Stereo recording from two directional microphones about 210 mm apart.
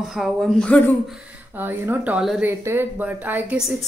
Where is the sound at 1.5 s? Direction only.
10° right (ahead or behind).